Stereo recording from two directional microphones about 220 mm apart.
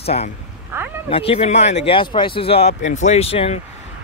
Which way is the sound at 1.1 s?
25° left (ahead or behind).